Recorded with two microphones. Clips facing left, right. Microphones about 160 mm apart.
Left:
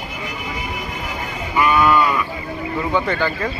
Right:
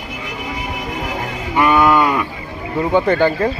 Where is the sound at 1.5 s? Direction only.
60° right (ahead or behind).